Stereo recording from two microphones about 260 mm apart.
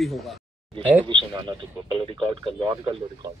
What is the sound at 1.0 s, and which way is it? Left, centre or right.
Speech, centre.